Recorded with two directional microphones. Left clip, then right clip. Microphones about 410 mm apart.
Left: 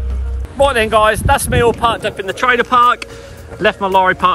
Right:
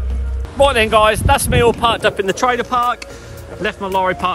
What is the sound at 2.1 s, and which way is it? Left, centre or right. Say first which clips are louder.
Speech: right 3 dB; centre.